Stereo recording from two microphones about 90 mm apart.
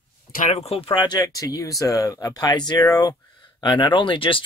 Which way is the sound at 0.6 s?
85° left.